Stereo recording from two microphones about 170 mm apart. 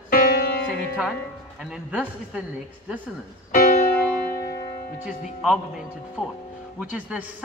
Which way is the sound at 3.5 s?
60° left (ahead or behind).